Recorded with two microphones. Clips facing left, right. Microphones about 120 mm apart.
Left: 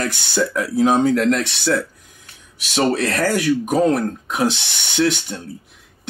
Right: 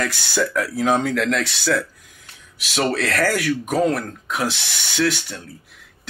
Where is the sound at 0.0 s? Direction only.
20° left (ahead or behind).